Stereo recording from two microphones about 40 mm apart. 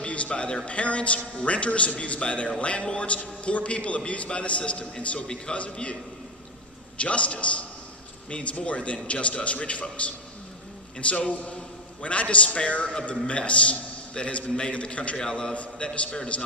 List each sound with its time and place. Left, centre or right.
0.0 s a man's voice: left
7.0 s a man's voice: left
15.5 s a man's voice: left